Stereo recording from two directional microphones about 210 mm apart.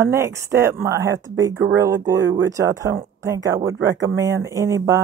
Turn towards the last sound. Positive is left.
turn(degrees=-15)  # may be behind; listen again after turning